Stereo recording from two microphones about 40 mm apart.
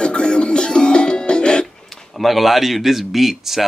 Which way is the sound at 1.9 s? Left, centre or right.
Centre.